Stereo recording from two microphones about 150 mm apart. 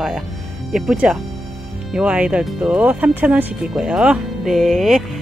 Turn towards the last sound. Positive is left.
turn(degrees=0)  # may be behind; listen again after turning